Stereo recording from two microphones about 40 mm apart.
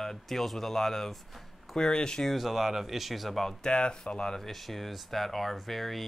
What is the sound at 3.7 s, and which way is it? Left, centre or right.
Speech, left.